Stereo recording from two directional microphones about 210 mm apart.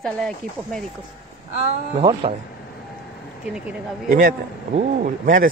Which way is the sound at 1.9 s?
25° right (ahead or behind).